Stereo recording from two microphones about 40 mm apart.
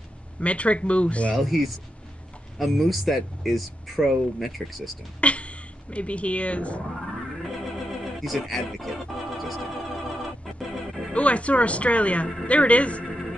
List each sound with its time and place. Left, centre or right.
0.4 s speech: left
1.4 s speech: centre
5.2 s a sound: left
7.2 s a sound: centre
9.2 s organ: centre
11.1 s speech: left
13.1 s music: centre